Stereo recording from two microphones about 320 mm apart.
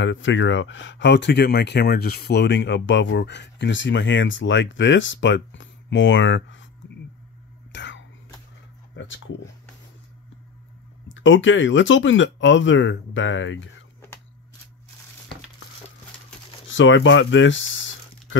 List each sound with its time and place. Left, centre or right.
0.0 s speech: left
7.7 s whispering: left
8.9 s a sound: left
11.1 s speech: left
16.6 s speech: left